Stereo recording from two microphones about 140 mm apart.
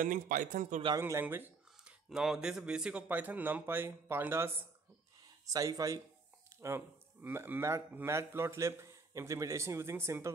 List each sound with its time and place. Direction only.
0.0 s speech: 70° right (ahead or behind)
0.9 s a sound: 20° right (ahead or behind)
2.0 s speech: 5° right (ahead or behind); by 10.3 s 20° right (ahead or behind)